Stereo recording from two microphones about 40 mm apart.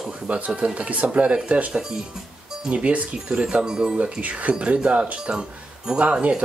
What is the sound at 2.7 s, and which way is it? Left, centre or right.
Speech, right.